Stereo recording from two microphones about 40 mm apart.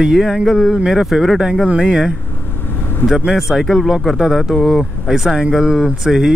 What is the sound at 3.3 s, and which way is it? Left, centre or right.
Speech, centre.